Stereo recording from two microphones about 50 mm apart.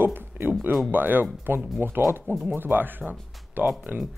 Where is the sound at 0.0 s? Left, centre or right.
Right.